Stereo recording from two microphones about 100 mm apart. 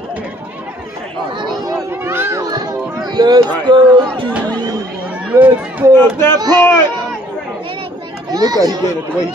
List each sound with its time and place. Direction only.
2.0 s children playing: 25° right (ahead or behind)
2.5 s music: 45° right (ahead or behind)
3.6 s speech: 50° right (ahead or behind)
5.3 s speech: 15° right (ahead or behind)
5.9 s speech: 25° left (ahead or behind)
6.3 s speech: 45° right (ahead or behind)
8.3 s a child's voice: 40° right (ahead or behind)